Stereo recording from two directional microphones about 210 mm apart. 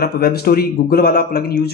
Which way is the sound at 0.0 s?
50° left (ahead or behind).